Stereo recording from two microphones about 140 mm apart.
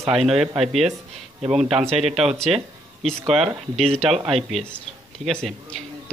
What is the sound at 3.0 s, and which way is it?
A man's voice, centre (ahead or behind).